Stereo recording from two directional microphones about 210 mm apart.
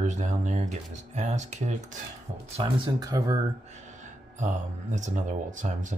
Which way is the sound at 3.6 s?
35° right (ahead or behind).